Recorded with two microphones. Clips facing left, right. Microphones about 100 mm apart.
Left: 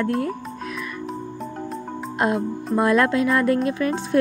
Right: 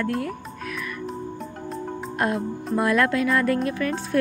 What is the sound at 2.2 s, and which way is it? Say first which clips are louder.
A woman's voice: left 3 dB; 20° left (ahead or behind).